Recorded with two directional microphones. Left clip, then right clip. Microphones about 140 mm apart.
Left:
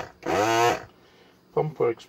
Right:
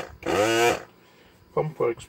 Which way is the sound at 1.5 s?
30° left (ahead or behind).